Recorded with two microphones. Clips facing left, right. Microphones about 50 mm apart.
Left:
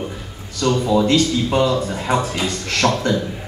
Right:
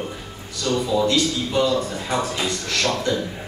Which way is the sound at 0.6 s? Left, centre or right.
Left.